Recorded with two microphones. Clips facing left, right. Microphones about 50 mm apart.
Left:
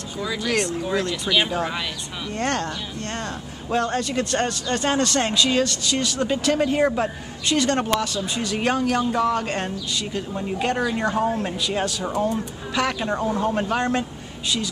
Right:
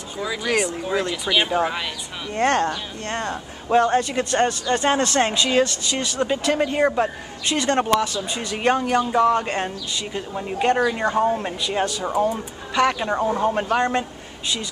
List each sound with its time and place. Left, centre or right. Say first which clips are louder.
0.2 s speech: right 1 dB; centre
2.3 s speech: right 6 dB; right; by 14.0 s centre